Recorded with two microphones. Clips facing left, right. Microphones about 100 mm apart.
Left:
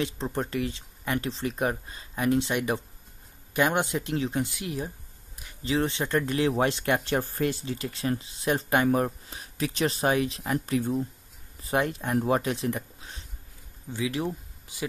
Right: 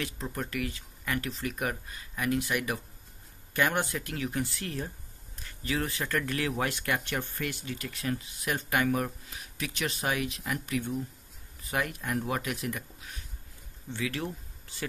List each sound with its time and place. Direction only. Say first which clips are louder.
0.0 s speech: left 6 dB; 30° left (ahead or behind)
13.9 s speech: left 5 dB; 15° left (ahead or behind)